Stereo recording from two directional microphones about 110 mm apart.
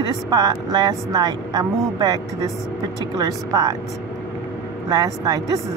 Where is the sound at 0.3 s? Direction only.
35° right (ahead or behind).